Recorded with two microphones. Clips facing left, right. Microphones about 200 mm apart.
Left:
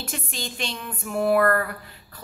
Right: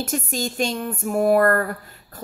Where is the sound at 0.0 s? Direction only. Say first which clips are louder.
Right 8 dB; 45° right (ahead or behind).